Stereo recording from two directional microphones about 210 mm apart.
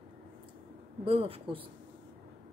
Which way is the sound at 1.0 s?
25° right (ahead or behind).